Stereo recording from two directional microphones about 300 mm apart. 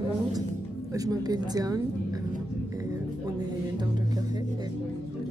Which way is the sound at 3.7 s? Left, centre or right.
Centre.